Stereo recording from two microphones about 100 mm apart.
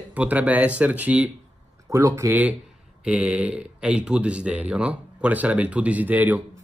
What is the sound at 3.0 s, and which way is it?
Speech, 10° right (ahead or behind).